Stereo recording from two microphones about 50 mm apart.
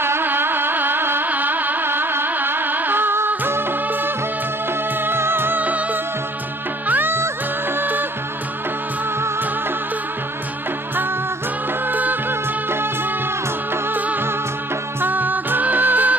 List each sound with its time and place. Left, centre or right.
0.0 s music: right
1.3 s carnatic music: right
5.0 s music: right
6.9 s music: right
11.9 s music: right
15.0 s music: right